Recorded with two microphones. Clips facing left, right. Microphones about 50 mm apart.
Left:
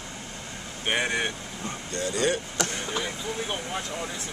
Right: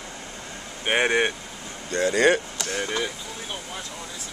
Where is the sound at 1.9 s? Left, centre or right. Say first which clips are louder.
Right 7 dB; right.